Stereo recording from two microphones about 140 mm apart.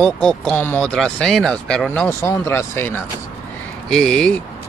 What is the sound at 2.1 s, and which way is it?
Speech, 20° left (ahead or behind).